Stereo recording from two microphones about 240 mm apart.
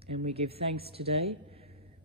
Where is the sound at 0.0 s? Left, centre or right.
Right.